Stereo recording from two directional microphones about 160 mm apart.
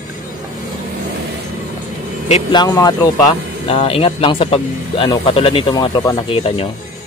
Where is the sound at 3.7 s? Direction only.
35° left (ahead or behind).